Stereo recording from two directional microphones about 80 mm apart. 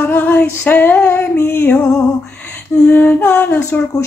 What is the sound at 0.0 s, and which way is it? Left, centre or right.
Music, left.